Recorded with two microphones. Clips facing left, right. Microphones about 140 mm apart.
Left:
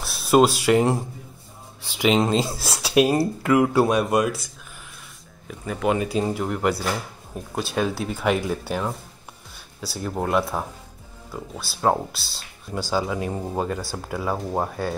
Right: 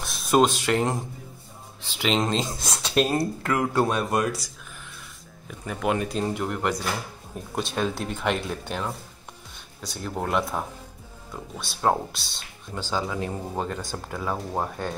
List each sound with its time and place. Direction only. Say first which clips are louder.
0.0 s speech: left 3 dB; 5° left (ahead or behind)
5.5 s speech: left 3 dB; centre (ahead or behind)